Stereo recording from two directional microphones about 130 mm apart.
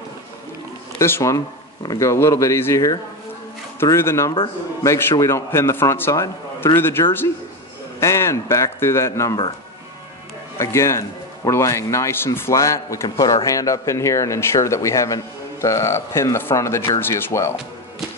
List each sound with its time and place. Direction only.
0.9 s speech: 20° left (ahead or behind)
10.6 s speech: 20° left (ahead or behind)